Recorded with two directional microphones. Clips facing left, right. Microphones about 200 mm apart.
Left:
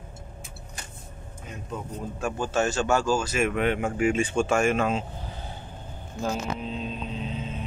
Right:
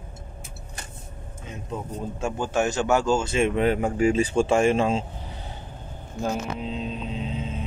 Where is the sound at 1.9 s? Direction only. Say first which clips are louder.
Right 1 dB; 20° right (ahead or behind).